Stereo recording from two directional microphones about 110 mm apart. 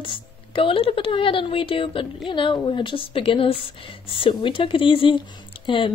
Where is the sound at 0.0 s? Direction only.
50° left (ahead or behind).